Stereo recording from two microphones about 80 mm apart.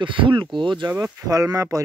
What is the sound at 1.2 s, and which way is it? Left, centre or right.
Speech, right.